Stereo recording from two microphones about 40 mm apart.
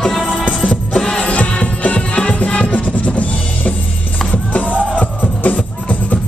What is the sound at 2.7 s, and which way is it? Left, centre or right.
Music, left.